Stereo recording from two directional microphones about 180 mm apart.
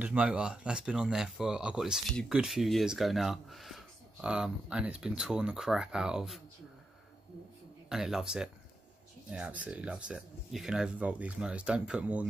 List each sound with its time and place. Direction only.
0.0 s speech: 5° right (ahead or behind)
7.9 s speech: centre (ahead or behind)